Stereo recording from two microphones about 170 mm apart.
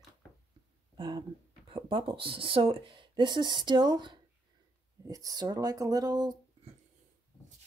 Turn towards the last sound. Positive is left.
turn(degrees=-25)  # may be behind; listen again after turning